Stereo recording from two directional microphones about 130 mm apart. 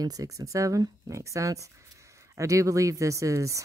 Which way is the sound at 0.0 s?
30° right (ahead or behind).